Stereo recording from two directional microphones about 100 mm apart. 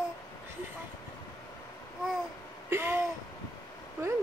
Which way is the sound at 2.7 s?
20° right (ahead or behind).